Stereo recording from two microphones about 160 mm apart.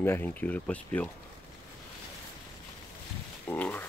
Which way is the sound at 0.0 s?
10° left (ahead or behind).